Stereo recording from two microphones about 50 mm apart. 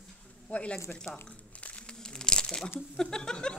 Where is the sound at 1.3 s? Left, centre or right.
Left; by 2.7 s centre.